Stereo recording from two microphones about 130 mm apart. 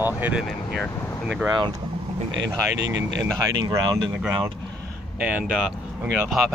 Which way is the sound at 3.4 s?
25° right (ahead or behind).